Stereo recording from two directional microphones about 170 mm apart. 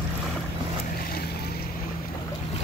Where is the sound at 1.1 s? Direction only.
65° left (ahead or behind).